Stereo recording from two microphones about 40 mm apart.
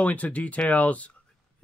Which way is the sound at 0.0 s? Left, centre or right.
Left.